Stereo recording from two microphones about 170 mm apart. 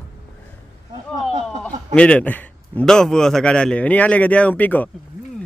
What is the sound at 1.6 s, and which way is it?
A man's voice, 5° left (ahead or behind).